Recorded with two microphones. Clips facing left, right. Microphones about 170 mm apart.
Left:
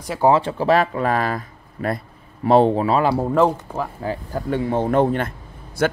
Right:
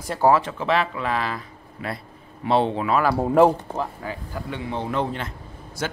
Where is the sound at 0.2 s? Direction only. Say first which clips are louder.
Left 2 dB; 30° left (ahead or behind).